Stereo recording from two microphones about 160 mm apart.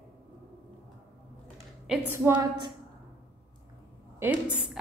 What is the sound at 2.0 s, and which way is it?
Speech, 15° right (ahead or behind).